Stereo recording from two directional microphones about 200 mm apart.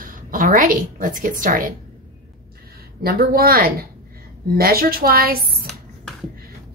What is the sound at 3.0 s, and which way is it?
A woman's voice, 50° right (ahead or behind).